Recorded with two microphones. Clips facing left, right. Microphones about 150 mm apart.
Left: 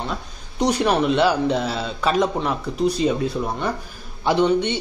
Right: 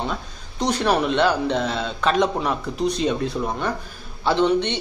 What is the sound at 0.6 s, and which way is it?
Speech, 10° left (ahead or behind).